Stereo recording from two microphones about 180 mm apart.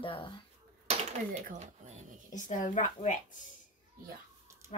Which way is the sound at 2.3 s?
45° left (ahead or behind).